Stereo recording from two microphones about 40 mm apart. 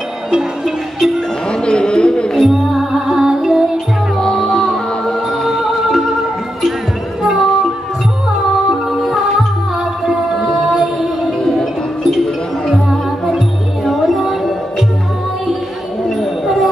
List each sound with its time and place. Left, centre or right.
0.3 s music: centre
1.5 s a sound: left
2.3 s music: centre
4.2 s music: centre
4.6 s music: centre
7.2 s music: centre
10.8 s music: centre
11.3 s music: centre
13.8 s music: centre